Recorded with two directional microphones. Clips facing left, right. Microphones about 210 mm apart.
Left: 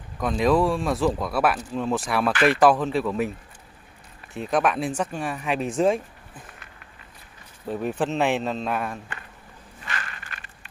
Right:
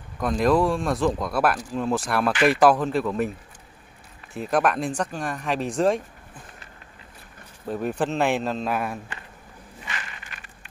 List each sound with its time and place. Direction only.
0.2 s speech: centre (ahead or behind)
4.3 s speech: centre (ahead or behind)
7.6 s speech: centre (ahead or behind)